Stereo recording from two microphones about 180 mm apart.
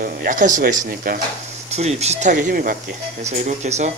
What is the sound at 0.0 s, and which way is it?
Speech, 50° right (ahead or behind).